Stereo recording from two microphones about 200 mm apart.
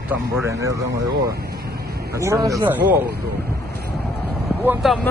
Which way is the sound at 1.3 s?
50° right (ahead or behind).